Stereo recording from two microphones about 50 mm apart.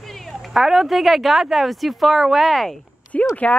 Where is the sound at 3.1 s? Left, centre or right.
Left.